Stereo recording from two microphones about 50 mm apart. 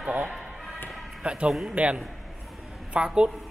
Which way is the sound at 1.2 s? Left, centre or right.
Right.